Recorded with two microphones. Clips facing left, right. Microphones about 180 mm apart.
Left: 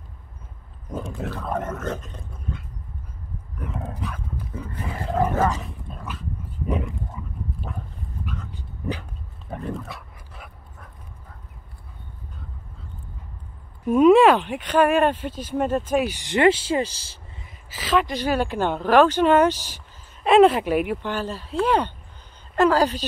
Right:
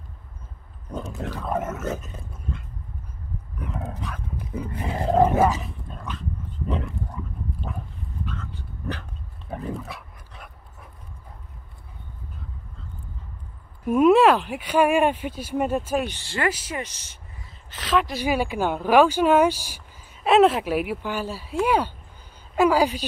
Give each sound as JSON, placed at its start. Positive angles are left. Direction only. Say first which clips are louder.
{"t": 1.0, "sound": "speech", "louder": "even", "side_deg": -5}
{"t": 3.5, "sound": "dog", "louder": "even", "side_deg": 0}
{"t": 3.9, "sound": "speech", "louder": "left 2 dB", "side_deg": 0}
{"t": 4.5, "sound": "wild animals", "louder": "right 5 dB", "side_deg": -15}
{"t": 5.3, "sound": "dog", "louder": "right 2 dB", "side_deg": -5}
{"t": 9.5, "sound": "dog", "louder": "even", "side_deg": 0}
{"t": 13.8, "sound": "speech", "louder": "left 2 dB", "side_deg": -5}
{"t": 16.0, "sound": "speech", "louder": "left 7 dB", "side_deg": 15}
{"t": 17.6, "sound": "a woman's voice", "louder": "left 1 dB", "side_deg": 0}